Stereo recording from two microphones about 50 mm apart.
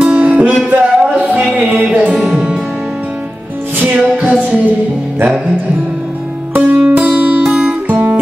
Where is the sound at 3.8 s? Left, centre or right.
Right.